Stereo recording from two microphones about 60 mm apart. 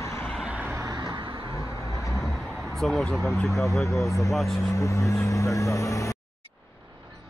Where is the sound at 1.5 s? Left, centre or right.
Left.